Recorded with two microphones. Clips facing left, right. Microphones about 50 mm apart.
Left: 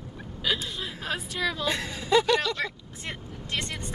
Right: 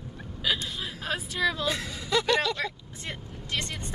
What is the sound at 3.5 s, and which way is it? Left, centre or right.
Speech, left.